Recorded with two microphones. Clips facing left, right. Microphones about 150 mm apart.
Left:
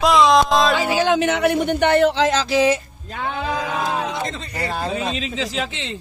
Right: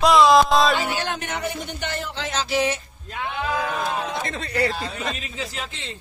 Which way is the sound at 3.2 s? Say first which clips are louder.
Left 2 dB; 90° left.